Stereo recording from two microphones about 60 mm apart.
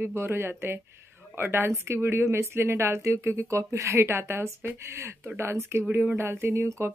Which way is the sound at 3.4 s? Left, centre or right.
Right.